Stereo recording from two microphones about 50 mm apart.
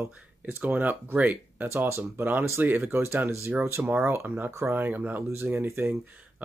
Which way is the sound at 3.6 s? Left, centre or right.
Right.